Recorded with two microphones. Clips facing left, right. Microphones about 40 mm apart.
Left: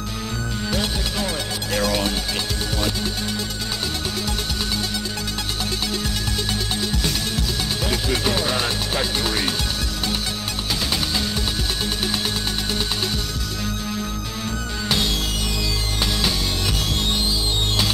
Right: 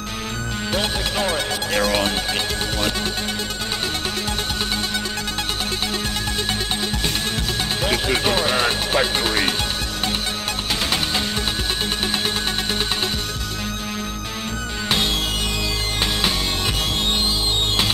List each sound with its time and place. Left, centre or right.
0.7 s music: right
7.8 s speech: right